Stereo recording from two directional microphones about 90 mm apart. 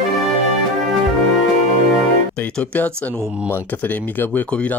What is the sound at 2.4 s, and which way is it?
Speech, 15° left (ahead or behind).